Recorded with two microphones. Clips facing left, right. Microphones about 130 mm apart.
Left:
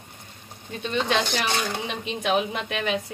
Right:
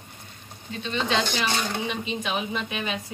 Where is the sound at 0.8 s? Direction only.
55° left (ahead or behind).